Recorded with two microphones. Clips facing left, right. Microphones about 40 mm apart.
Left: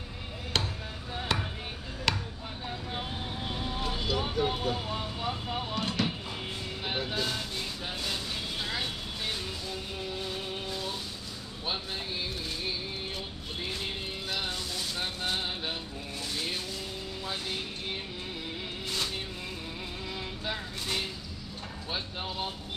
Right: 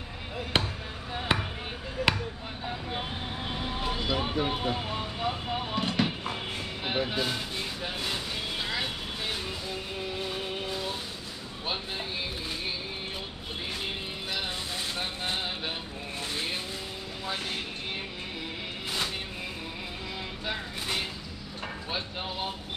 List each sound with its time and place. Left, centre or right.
0.5 s basketball bounce: right
3.8 s speech: right
5.8 s a sound: centre
6.8 s speech: right
14.8 s vehicle: right